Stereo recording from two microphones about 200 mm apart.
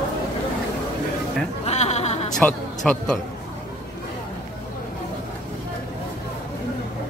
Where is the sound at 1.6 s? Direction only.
35° left (ahead or behind).